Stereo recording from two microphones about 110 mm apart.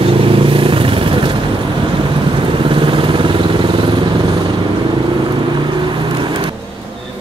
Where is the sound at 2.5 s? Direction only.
50° right (ahead or behind).